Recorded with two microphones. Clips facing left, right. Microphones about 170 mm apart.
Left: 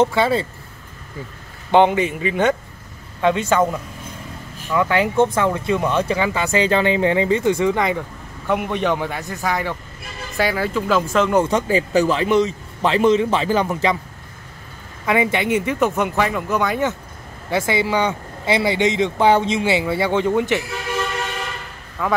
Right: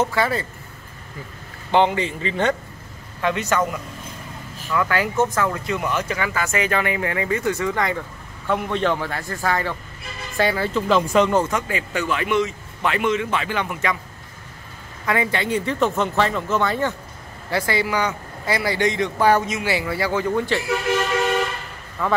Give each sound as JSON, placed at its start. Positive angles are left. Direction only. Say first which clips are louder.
{"t": 0.0, "sound": "speech", "louder": "left 4 dB", "side_deg": 25}
{"t": 1.7, "sound": "a man's voice", "louder": "left 4 dB", "side_deg": 15}
{"t": 4.7, "sound": "a man's voice", "louder": "left 4 dB", "side_deg": 25}
{"t": 11.4, "sound": "speech", "louder": "left 6 dB", "side_deg": 30}
{"t": 15.0, "sound": "a man's voice", "louder": "left 4 dB", "side_deg": 15}
{"t": 22.0, "sound": "speech", "louder": "left 1 dB", "side_deg": 0}